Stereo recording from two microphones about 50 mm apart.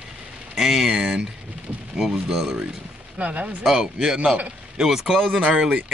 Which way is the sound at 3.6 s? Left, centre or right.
Centre.